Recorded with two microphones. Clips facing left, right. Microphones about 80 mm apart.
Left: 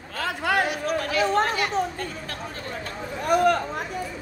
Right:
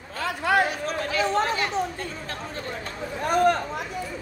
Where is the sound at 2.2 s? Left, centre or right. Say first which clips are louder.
Right 1 dB; right.